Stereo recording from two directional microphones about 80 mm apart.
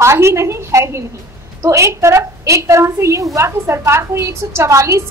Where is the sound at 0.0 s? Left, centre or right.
Right.